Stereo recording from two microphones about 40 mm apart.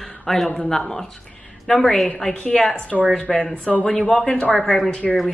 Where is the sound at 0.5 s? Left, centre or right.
Centre.